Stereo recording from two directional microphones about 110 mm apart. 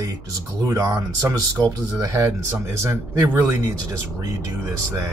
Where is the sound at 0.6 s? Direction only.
30° right (ahead or behind).